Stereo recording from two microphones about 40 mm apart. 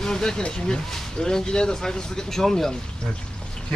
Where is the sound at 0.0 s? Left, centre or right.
Centre.